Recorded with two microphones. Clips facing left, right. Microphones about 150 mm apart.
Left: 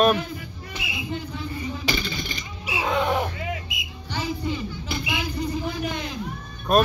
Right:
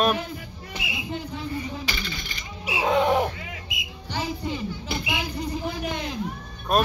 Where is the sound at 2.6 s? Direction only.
25° right (ahead or behind).